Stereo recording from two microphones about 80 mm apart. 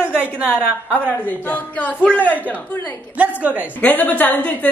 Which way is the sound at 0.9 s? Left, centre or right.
Centre.